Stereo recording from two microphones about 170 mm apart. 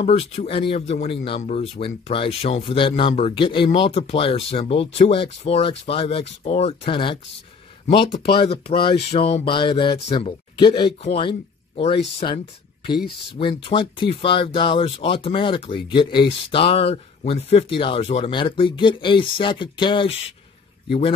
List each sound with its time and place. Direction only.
0.0 s speech: 35° left (ahead or behind)
13.4 s speech: 30° left (ahead or behind)